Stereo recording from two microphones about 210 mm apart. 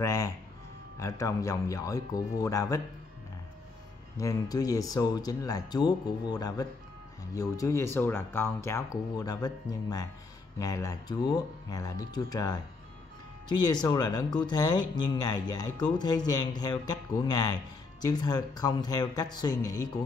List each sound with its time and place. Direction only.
0.0 s speech: 15° left (ahead or behind)
4.2 s speech: 15° left (ahead or behind)